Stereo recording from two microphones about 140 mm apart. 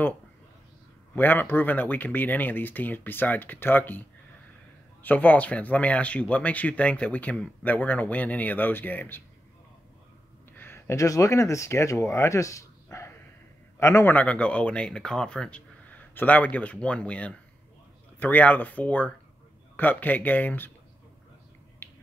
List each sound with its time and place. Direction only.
1.1 s speech: 15° left (ahead or behind)
5.0 s speech: 10° left (ahead or behind)
10.5 s speech: 15° left (ahead or behind)
21.8 s finger snapping: 20° left (ahead or behind)